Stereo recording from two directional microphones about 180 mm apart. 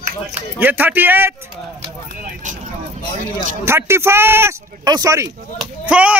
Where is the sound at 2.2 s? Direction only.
45° right (ahead or behind).